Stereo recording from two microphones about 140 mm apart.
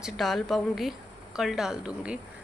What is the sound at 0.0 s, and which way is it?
Speech, centre (ahead or behind).